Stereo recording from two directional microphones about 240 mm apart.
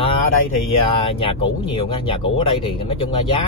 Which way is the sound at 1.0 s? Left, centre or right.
Left.